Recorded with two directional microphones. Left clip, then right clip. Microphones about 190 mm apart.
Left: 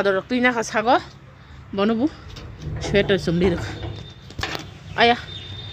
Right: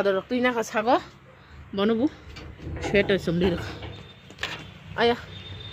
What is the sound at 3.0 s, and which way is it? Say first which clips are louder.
Speech: left 4 dB; 10° left (ahead or behind).